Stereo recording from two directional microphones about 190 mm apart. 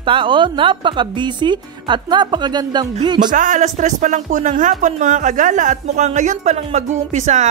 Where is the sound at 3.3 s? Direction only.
40° right (ahead or behind).